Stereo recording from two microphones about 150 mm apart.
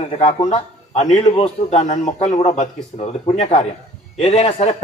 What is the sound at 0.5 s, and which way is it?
A man's voice, 50° left (ahead or behind).